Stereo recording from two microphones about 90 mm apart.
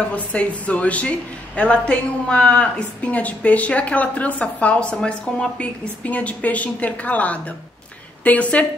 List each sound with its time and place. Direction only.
0.1 s a woman's voice: 15° left (ahead or behind)